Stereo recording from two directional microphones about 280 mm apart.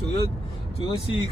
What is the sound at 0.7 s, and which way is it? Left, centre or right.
Speech, centre.